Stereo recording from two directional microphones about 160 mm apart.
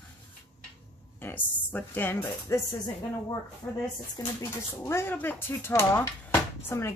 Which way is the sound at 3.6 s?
15° left (ahead or behind).